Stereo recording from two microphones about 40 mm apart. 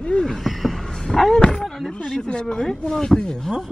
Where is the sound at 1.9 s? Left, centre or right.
Left.